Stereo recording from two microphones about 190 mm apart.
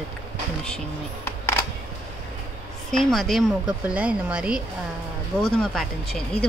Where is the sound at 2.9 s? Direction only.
Centre (ahead or behind).